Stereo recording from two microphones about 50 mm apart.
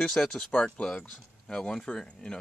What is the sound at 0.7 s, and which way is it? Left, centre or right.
Speech, centre.